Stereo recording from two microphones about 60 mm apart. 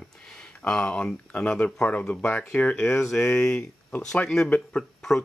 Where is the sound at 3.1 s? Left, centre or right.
Centre.